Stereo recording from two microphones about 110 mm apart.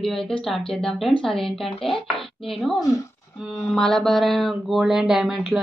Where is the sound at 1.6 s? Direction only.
55° left (ahead or behind).